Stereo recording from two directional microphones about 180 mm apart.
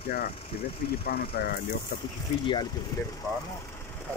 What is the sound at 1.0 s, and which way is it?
Speech, 60° left (ahead or behind).